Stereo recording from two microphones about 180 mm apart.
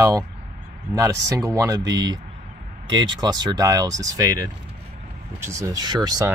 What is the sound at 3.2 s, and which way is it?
Speech, 20° right (ahead or behind).